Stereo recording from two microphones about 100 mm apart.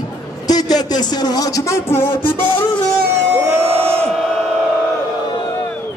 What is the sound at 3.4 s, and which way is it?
Crowd, 25° right (ahead or behind).